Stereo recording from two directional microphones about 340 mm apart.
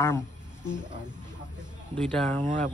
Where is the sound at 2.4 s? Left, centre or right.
Right.